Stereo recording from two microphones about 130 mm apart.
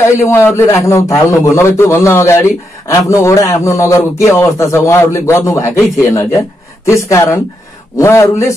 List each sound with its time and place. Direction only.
0.3 s a man's voice: 20° left (ahead or behind)